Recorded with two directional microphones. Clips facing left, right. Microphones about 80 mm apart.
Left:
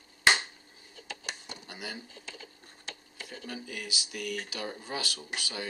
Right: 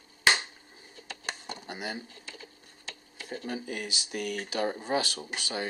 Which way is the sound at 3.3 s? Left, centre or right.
Right.